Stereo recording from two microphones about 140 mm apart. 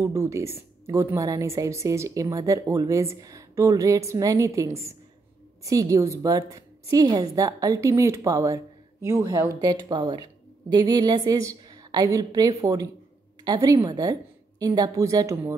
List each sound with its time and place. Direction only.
0.0 s a woman's voice: 20° right (ahead or behind)